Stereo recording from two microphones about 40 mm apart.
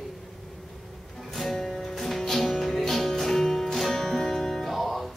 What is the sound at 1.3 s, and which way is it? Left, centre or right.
Music, centre.